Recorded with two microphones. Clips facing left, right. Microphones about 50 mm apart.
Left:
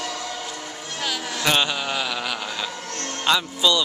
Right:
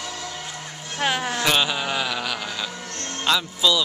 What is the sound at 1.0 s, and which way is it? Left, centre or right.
Speech, right.